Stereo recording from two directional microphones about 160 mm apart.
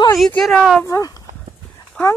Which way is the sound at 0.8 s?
20° left (ahead or behind).